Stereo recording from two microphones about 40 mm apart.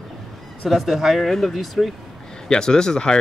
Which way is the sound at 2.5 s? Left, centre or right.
Centre.